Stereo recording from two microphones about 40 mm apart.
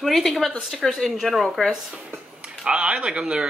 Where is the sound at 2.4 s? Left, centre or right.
Right.